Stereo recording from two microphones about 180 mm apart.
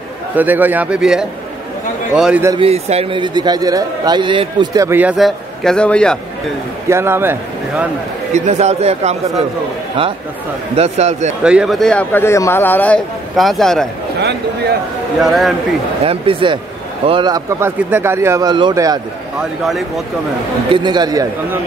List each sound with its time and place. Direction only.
0.4 s a man's voice: 10° right (ahead or behind)
2.6 s a man's voice: 35° right (ahead or behind); by 6.1 s 5° left (ahead or behind)
6.9 s a man's voice: 15° right (ahead or behind)
8.3 s a man's voice: 40° right (ahead or behind)
10.8 s a man's voice: 40° right (ahead or behind)
11.4 s a man's voice: 5° right (ahead or behind)
15.2 s a man's voice: centre (ahead or behind)
16.0 s a man's voice: 30° right (ahead or behind)
20.7 s a man's voice: 25° right (ahead or behind)